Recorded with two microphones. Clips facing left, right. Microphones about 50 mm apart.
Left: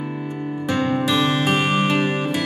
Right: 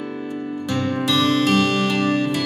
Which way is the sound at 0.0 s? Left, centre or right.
Centre.